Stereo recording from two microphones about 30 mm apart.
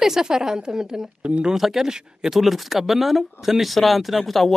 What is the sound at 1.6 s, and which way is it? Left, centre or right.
Speech, centre.